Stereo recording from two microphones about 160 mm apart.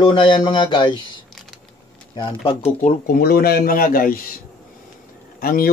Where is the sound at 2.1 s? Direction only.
30° left (ahead or behind).